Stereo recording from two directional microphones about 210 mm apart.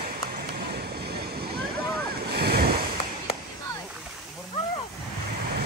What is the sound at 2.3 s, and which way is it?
Waves, 50° right (ahead or behind).